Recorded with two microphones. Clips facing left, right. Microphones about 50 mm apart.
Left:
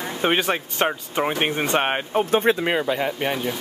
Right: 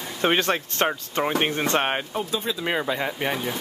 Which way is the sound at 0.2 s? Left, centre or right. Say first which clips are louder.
Even; centre.